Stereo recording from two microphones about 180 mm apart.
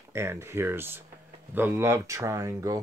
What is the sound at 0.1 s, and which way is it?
Speech, 15° right (ahead or behind).